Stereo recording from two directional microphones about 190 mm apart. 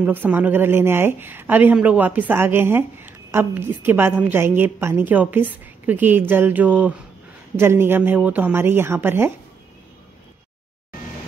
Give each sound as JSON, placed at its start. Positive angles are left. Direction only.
{"t": 0.0, "sound": "a woman's voice", "side_deg": -10}